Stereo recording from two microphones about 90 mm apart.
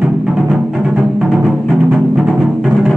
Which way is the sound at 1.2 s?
5° right (ahead or behind).